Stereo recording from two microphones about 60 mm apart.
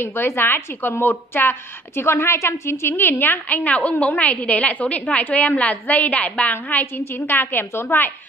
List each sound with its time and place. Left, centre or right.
0.0 s a woman's voice: left